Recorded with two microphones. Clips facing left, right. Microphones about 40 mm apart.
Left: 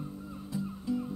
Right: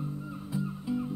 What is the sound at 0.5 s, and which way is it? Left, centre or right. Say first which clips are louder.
Music: right 1 dB; centre.